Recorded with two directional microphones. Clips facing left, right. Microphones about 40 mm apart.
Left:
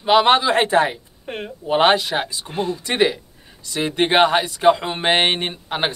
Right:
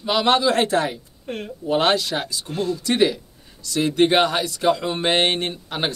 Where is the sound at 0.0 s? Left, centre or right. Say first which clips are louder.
Left 4 dB; left.